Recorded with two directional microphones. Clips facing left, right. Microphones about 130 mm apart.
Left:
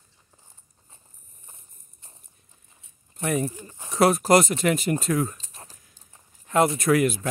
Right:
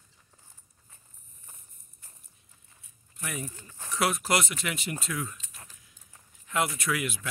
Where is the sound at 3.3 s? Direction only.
40° left (ahead or behind).